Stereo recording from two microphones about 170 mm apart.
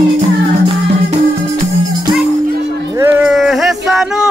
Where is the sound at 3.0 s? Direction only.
5° right (ahead or behind).